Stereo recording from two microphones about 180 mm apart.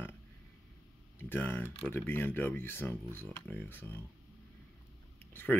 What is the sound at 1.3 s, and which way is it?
Speech, 10° left (ahead or behind).